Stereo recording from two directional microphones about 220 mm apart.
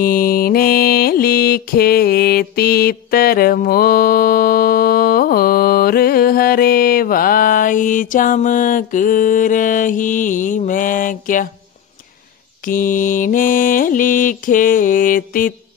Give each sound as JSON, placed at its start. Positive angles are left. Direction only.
{"t": 0.0, "sound": "mantra", "side_deg": 40}
{"t": 12.6, "sound": "mantra", "side_deg": 40}